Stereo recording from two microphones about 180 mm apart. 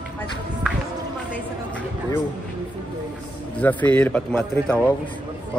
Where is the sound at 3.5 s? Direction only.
10° left (ahead or behind).